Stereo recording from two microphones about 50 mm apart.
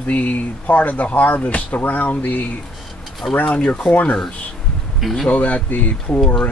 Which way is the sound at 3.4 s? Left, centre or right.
Left.